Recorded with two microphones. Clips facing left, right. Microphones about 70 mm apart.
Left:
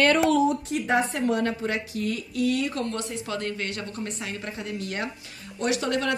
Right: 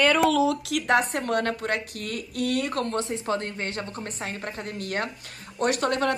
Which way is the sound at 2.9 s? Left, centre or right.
Right.